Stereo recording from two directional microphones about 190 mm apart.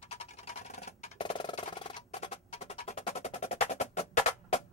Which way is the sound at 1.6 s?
30° left (ahead or behind).